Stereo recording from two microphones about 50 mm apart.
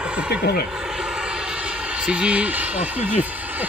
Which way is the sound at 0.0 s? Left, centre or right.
Right.